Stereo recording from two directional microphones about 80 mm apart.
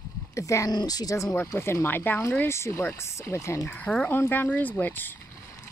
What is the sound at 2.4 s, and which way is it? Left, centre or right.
Speech, left.